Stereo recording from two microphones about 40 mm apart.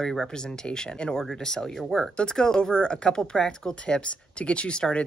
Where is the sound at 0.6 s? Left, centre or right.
Left.